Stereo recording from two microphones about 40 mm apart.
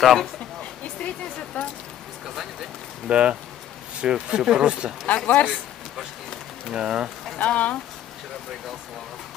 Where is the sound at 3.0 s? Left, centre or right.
Right.